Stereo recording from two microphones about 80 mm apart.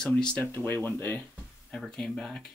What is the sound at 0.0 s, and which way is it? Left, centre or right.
Speech, centre.